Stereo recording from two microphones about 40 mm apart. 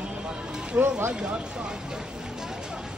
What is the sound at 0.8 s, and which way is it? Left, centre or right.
Speech, right.